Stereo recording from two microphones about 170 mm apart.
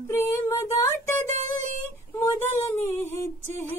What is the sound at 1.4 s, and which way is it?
Speech, 45° right (ahead or behind).